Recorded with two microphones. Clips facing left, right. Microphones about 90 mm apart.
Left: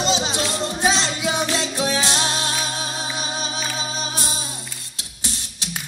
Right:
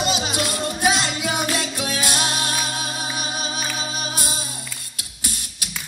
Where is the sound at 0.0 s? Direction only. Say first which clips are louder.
Left 1 dB; 25° left (ahead or behind).